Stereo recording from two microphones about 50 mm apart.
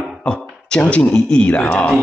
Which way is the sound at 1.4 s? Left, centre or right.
Left.